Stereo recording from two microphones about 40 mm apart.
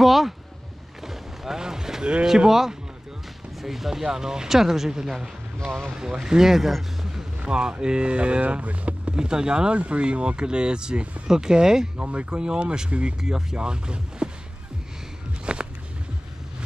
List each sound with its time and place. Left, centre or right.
0.0 s speech: centre
1.0 s boat: centre
2.2 s speech: centre
6.2 s speech: centre
7.3 s speech: right
9.1 s speech: right
12.0 s speech: right
12.3 s speech: right
15.5 s a sound: right